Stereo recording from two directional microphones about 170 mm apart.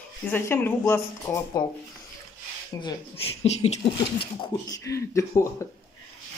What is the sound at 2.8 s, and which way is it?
Speech, 30° left (ahead or behind).